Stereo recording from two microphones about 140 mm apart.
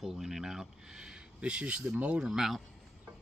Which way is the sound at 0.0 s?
Centre (ahead or behind).